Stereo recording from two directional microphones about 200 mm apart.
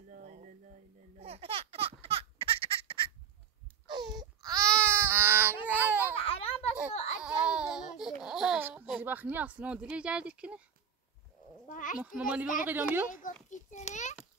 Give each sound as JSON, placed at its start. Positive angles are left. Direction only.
{"t": 0.1, "sound": "a sound", "side_deg": -40}
{"t": 1.2, "sound": "baby laughter", "side_deg": -30}
{"t": 3.8, "sound": "baby cry", "side_deg": -20}
{"t": 6.1, "sound": "baby laughter", "side_deg": 30}
{"t": 6.9, "sound": "a sound", "side_deg": 30}
{"t": 7.2, "sound": "a sound", "side_deg": -5}
{"t": 8.2, "sound": "speech", "side_deg": 0}
{"t": 11.7, "sound": "a child's voice", "side_deg": 40}
{"t": 12.0, "sound": "a child's voice", "side_deg": -5}
{"t": 13.1, "sound": "a child's voice", "side_deg": 40}